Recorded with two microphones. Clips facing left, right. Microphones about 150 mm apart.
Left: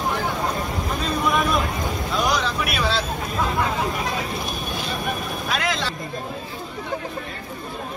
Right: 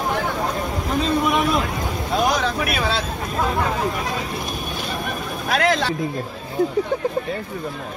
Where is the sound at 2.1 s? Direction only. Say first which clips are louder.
Right 3 dB; 50° right (ahead or behind).